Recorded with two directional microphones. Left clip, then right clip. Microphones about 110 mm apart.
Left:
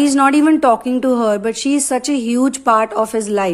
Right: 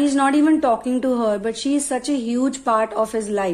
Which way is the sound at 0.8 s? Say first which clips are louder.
Left 5 dB; 30° left (ahead or behind).